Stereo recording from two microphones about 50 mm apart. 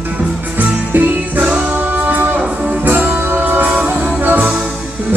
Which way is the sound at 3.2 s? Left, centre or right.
Right.